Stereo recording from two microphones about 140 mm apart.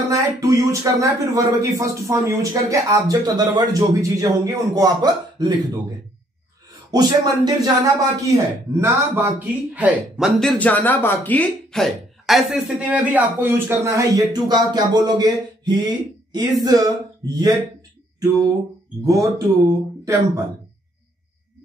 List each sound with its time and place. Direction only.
0.1 s speech: 25° right (ahead or behind)
6.9 s speech: 30° right (ahead or behind); by 10.5 s 5° right (ahead or behind)
10.6 s speech: 10° left (ahead or behind); by 17.5 s 25° right (ahead or behind)
19.0 s speech: 25° right (ahead or behind)